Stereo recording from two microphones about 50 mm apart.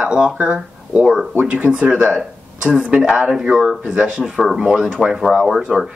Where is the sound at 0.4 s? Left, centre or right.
Right.